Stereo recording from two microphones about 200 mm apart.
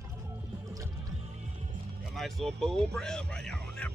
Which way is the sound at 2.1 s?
Centre (ahead or behind).